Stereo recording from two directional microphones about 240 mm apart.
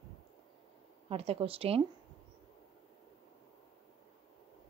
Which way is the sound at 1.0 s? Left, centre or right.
Right.